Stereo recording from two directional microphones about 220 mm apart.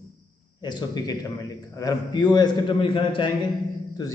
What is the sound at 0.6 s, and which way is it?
A man's voice, 20° left (ahead or behind).